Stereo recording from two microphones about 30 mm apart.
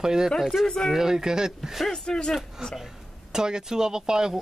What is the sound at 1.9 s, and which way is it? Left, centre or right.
Speech, centre.